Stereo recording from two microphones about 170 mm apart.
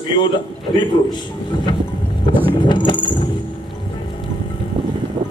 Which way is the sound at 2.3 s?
30° left (ahead or behind).